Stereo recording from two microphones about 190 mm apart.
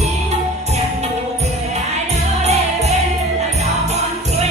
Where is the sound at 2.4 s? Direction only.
35° right (ahead or behind).